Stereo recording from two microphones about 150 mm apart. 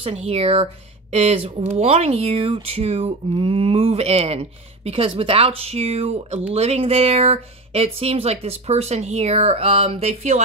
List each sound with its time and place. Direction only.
0.0 s speech: 40° right (ahead or behind)